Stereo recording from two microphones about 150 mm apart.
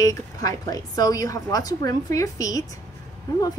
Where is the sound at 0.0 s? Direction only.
25° left (ahead or behind).